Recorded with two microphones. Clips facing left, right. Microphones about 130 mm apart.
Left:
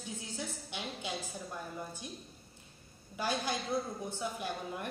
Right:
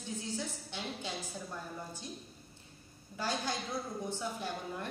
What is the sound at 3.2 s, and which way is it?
A woman's voice, 15° left (ahead or behind).